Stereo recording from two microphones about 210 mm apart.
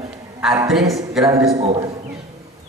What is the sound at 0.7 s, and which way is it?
Speech, centre (ahead or behind).